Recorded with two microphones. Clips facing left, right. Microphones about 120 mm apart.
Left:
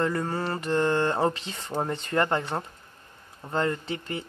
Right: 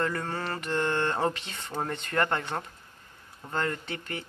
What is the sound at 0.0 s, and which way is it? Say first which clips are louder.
Speech: left 4 dB; 20° left (ahead or behind).